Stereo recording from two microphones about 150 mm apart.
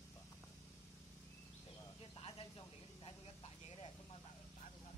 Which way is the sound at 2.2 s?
40° left (ahead or behind).